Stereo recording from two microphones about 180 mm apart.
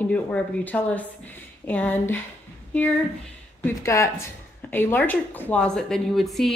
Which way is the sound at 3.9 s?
15° left (ahead or behind).